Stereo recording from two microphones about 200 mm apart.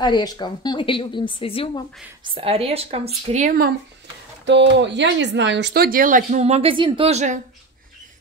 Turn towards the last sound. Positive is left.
turn(degrees=-35)  # may be behind; listen again after turning